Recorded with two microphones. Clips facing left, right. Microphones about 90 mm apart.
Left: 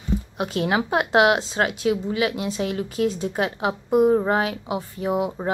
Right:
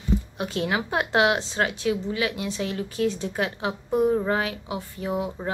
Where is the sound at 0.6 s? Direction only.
20° left (ahead or behind).